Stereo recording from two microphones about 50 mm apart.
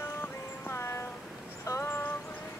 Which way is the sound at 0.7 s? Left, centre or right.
Left.